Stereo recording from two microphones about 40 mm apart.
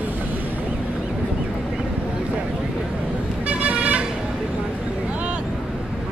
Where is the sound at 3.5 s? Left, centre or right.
Right.